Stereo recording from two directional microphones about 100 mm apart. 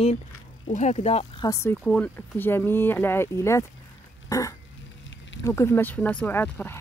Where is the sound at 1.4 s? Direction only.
30° left (ahead or behind).